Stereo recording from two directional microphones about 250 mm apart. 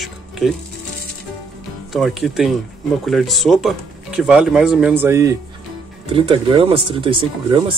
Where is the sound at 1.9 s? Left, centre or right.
Centre.